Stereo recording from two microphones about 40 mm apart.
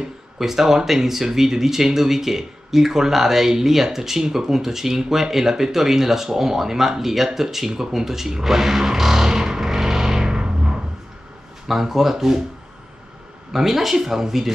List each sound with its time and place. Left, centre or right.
0.4 s speech: centre
11.6 s speech: centre
13.5 s speech: centre